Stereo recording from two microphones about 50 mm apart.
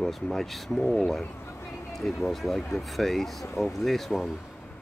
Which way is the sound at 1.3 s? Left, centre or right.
Left.